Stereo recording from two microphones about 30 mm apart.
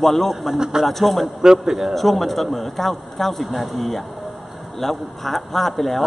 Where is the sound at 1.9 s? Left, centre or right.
Centre.